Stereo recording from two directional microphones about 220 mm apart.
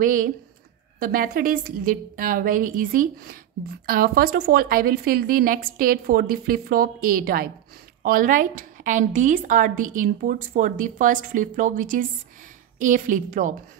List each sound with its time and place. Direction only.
0.0 s a woman's voice: 40° right (ahead or behind)